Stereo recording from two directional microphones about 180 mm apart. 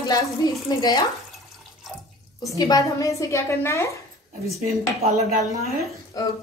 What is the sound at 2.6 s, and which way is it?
Speech, 20° left (ahead or behind).